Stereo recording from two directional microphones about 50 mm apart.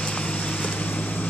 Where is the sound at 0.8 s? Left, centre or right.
Left.